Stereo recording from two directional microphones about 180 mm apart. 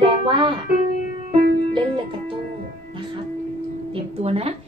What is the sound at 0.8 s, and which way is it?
Music, 45° left (ahead or behind).